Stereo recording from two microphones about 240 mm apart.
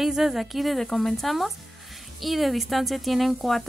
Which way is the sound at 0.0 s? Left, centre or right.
Centre.